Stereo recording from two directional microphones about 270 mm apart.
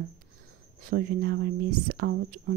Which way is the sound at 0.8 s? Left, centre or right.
Right.